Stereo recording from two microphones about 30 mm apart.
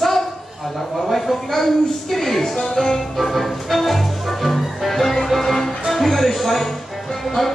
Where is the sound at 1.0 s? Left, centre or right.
Centre.